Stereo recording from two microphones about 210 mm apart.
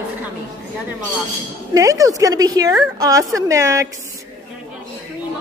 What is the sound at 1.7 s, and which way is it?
Speech, 15° right (ahead or behind).